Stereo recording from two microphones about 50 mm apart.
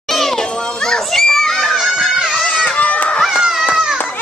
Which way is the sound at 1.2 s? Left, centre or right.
Centre.